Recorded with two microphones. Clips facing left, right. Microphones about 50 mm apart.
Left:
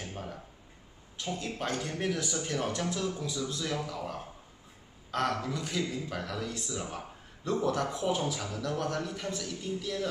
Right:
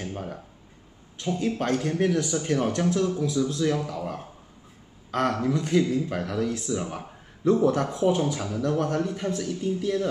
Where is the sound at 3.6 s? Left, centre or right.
Centre.